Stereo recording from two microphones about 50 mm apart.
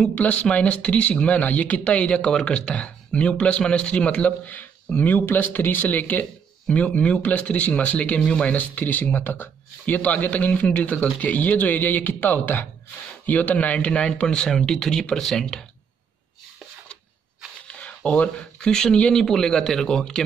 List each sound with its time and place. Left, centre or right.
0.1 s speech: left
4.5 s a man's voice: left
9.9 s a man's voice: left; by 15.6 s centre
17.6 s a sound: left
18.7 s speech: centre